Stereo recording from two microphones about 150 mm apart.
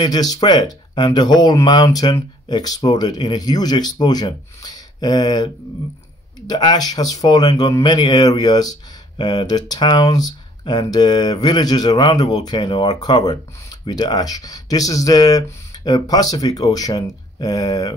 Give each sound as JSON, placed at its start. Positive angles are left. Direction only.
{"t": 0.0, "sound": "speech", "side_deg": 25}
{"t": 6.5, "sound": "speech", "side_deg": 30}